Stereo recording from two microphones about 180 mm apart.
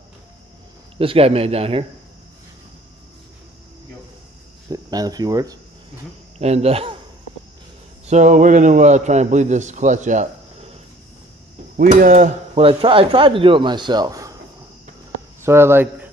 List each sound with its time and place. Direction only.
0.9 s a man's voice: 30° right (ahead or behind)
4.6 s speech: 20° right (ahead or behind)
6.3 s a man's voice: 35° right (ahead or behind)
8.1 s a man's voice: 45° right (ahead or behind)
11.7 s cutlery: 50° right (ahead or behind)
12.5 s speech: 30° right (ahead or behind)
15.4 s speech: 15° right (ahead or behind)